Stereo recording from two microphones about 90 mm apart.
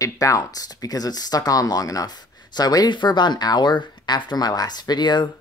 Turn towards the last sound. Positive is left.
turn(degrees=55)  # may be behind; listen again after turning